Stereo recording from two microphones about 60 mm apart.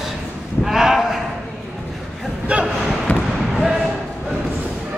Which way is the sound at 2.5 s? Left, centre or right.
Right.